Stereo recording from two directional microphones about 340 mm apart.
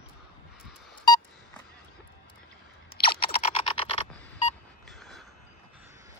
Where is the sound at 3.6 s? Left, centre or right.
Centre.